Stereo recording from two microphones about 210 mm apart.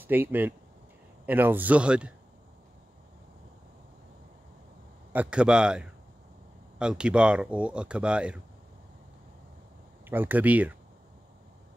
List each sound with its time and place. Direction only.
0.0 s speech: 10° right (ahead or behind)
5.1 s speech: 5° right (ahead or behind)
10.0 s speech: 10° right (ahead or behind)